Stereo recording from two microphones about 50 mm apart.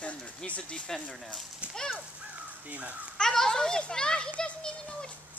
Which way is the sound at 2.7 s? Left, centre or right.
Right.